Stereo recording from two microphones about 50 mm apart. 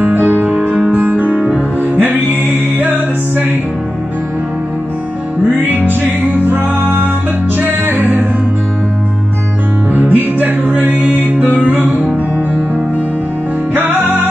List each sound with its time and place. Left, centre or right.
0.0 s music: right
0.9 s music: right
5.7 s music: right
9.9 s music: right
13.7 s music: right